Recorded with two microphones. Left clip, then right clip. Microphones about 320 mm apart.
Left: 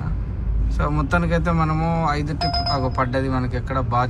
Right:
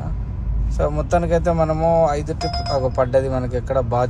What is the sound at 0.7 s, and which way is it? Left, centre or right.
Speech, centre.